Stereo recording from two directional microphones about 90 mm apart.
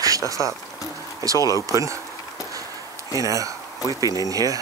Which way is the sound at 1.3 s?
40° left (ahead or behind).